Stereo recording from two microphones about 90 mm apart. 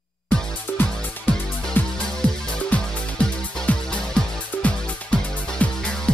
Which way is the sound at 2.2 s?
15° left (ahead or behind).